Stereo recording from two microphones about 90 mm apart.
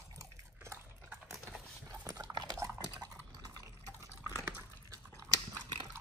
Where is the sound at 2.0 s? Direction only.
35° right (ahead or behind).